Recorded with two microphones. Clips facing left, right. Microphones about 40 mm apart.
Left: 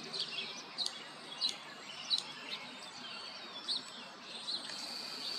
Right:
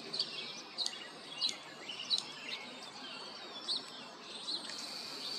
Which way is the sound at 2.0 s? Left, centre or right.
Centre.